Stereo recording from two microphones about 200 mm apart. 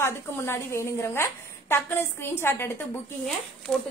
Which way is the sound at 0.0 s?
15° left (ahead or behind).